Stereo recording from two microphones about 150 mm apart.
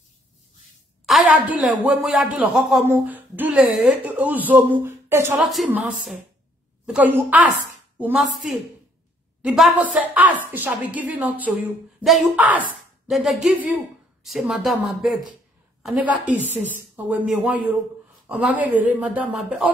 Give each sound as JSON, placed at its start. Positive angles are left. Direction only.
{"t": 1.0, "sound": "a sound", "side_deg": -5}
{"t": 2.0, "sound": "a woman's voice", "side_deg": 0}
{"t": 5.4, "sound": "speech", "side_deg": 0}
{"t": 6.9, "sound": "a woman's voice", "side_deg": -10}